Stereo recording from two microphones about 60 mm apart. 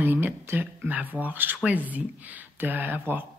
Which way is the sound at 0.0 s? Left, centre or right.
Right.